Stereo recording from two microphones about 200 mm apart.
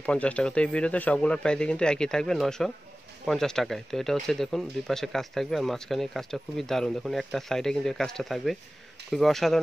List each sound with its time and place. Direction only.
0.0 s speech: 5° left (ahead or behind)